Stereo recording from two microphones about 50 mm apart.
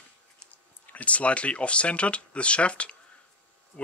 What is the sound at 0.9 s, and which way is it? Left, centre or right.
Speech, left.